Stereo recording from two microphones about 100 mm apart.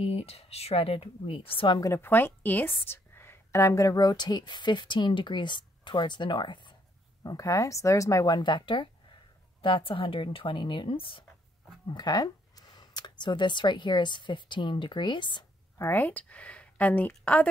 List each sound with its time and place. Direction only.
0.0 s a woman's voice: 75° left (ahead or behind)
1.8 s a woman's voice: 25° left (ahead or behind); by 6.7 s 50° left (ahead or behind)
7.2 s speech: 35° left (ahead or behind)
8.4 s a woman's voice: 50° left (ahead or behind)
11.9 s speech: 40° left (ahead or behind)
15.8 s a woman's voice: 20° left (ahead or behind)